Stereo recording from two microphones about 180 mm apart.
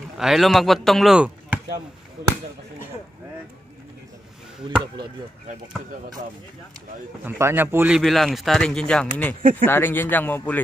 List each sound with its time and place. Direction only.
0.2 s speech: centre (ahead or behind)
7.2 s speech: 15° right (ahead or behind)
8.0 s speech: centre (ahead or behind)
9.4 s speech: 50° right (ahead or behind)
9.7 s speech: 10° left (ahead or behind)